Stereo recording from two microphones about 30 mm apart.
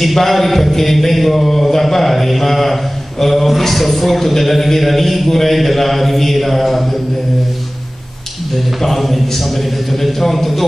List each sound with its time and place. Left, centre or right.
0.0 s mantra: centre
8.8 s a man's voice: centre
9.6 s mantra: centre